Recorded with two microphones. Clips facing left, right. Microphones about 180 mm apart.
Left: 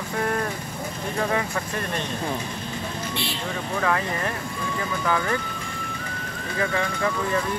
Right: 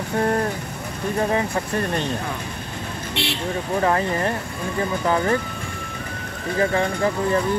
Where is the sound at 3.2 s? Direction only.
70° right (ahead or behind).